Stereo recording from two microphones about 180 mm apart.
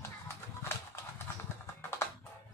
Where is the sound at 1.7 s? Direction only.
15° left (ahead or behind).